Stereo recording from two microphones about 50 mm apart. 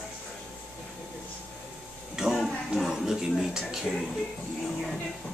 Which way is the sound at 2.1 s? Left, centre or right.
Centre.